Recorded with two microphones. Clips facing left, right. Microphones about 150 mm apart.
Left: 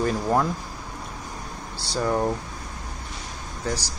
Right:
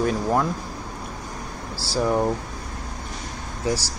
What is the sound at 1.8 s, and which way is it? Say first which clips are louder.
Speech: right 2 dB; 5° right (ahead or behind).